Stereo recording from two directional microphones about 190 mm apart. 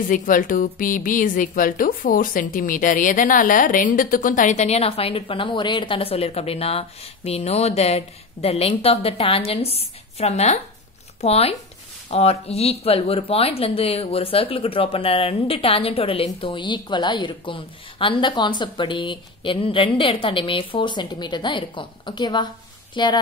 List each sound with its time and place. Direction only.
0.1 s a woman's voice: 45° left (ahead or behind); by 23.1 s 25° left (ahead or behind)